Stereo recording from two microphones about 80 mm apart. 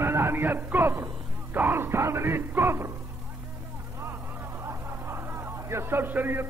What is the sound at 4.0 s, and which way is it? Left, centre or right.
Vehicle, right.